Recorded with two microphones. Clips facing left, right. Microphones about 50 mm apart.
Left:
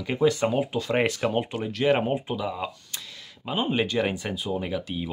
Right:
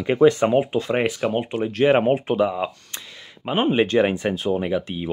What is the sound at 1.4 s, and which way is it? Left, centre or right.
Speech, right.